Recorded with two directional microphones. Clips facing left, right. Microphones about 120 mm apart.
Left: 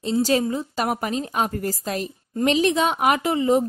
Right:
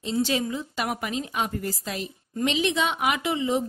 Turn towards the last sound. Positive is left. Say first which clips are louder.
# left 6 dB
turn(degrees=45)  # may be behind; listen again after turning